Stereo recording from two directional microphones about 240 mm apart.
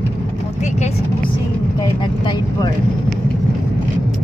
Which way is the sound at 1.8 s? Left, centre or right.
Centre.